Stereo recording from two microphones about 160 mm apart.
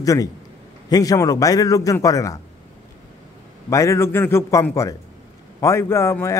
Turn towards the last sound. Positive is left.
turn(degrees=15)  # may be behind; listen again after turning